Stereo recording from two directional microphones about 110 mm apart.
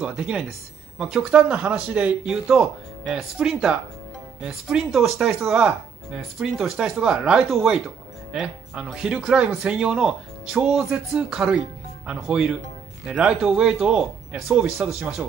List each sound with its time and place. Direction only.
0.0 s speech: 5° right (ahead or behind)